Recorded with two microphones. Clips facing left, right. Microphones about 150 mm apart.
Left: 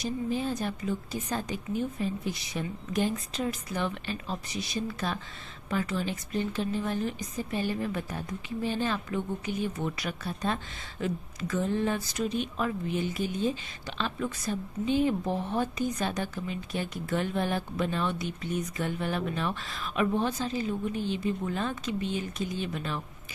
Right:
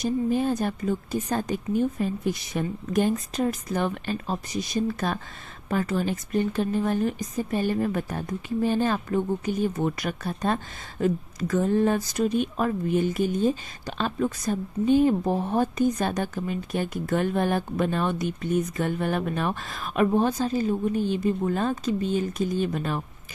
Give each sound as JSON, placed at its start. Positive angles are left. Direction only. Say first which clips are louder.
{"t": 0.0, "sound": "a woman's voice", "louder": "right 6 dB", "side_deg": -50}